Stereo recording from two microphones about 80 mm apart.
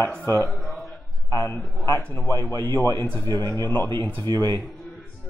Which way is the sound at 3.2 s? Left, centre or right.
Left.